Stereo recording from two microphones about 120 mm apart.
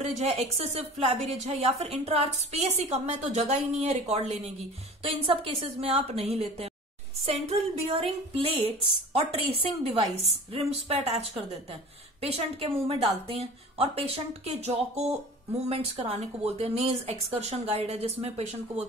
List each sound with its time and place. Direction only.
0.0 s a woman's voice: 65° right (ahead or behind)
5.0 s a woman's voice: 50° right (ahead or behind)